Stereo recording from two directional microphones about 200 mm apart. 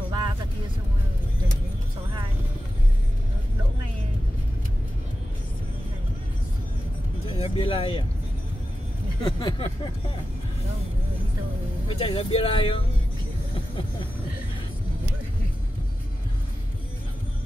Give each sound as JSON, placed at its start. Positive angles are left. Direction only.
{"t": 7.2, "sound": "music", "side_deg": 25}
{"t": 9.2, "sound": "speech", "side_deg": 20}
{"t": 11.9, "sound": "speech", "side_deg": 25}